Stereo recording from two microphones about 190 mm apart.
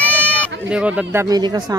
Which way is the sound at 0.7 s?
5° right (ahead or behind).